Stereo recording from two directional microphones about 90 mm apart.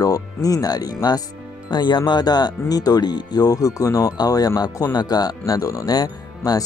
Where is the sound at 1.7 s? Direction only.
55° left (ahead or behind).